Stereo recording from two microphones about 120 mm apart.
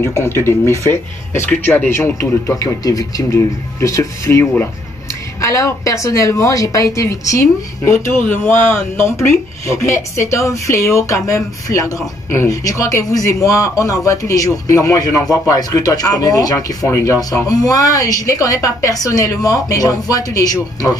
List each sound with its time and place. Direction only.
0.0 s a woman's voice: 20° left (ahead or behind)
1.5 s a woman's voice: 10° left (ahead or behind); by 21.0 s 30° left (ahead or behind)